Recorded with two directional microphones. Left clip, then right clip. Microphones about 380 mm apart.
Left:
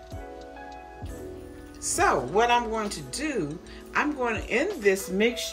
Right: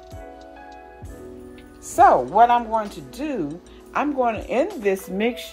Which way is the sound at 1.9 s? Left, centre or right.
Centre.